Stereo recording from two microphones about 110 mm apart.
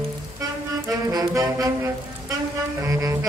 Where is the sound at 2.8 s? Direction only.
30° right (ahead or behind).